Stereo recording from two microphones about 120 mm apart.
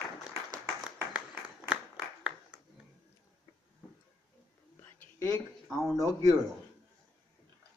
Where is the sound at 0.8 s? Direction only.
10° right (ahead or behind).